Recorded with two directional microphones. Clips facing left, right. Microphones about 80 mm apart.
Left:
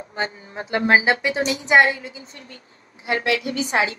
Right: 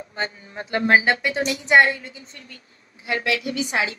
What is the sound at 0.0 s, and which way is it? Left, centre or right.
Speech, left.